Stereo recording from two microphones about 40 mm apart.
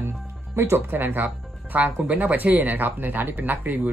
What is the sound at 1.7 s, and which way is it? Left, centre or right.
Speech, right.